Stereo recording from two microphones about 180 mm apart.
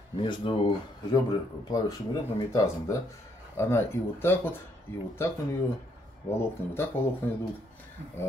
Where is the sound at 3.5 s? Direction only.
15° left (ahead or behind).